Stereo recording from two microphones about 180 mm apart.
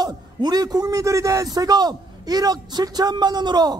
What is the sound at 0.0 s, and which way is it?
A man's voice, 25° right (ahead or behind).